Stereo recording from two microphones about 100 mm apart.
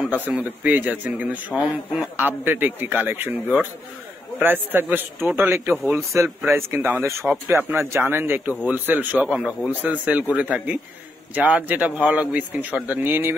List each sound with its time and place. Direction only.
0.1 s a man's voice: 15° right (ahead or behind)